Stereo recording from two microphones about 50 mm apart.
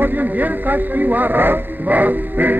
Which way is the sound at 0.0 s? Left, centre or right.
Right.